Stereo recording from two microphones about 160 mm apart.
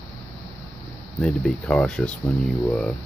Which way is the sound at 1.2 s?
5° left (ahead or behind).